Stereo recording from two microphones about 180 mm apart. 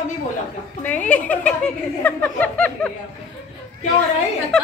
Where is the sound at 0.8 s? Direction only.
10° left (ahead or behind).